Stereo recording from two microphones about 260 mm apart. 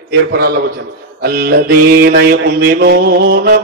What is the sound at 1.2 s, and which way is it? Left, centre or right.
Mantra, right.